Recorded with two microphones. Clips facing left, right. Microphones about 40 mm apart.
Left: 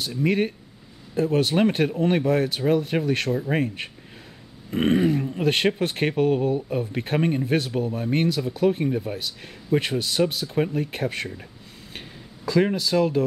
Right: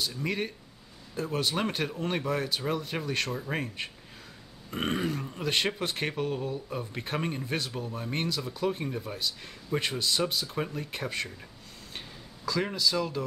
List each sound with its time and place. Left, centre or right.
0.1 s speech: left
3.3 s grunt: centre
3.5 s speech: left
4.6 s grunt: centre
5.4 s speech: left
10.4 s grunt: centre
10.7 s speech: left
12.4 s speech: left